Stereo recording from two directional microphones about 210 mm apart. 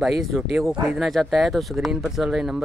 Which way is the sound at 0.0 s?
Centre (ahead or behind).